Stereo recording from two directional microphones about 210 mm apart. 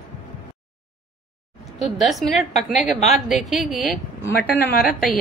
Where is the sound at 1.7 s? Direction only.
Centre (ahead or behind).